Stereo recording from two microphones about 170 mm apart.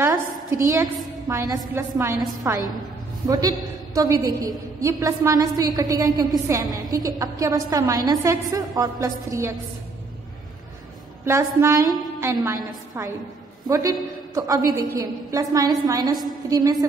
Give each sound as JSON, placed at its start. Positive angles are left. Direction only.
{"t": 0.0, "sound": "a sound", "side_deg": -15}
{"t": 1.3, "sound": "a woman's voice", "side_deg": -20}
{"t": 11.2, "sound": "a woman's voice", "side_deg": -15}